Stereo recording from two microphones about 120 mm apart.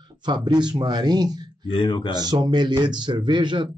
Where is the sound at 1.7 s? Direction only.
45° left (ahead or behind).